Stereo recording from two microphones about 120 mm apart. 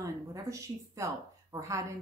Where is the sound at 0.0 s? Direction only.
25° right (ahead or behind).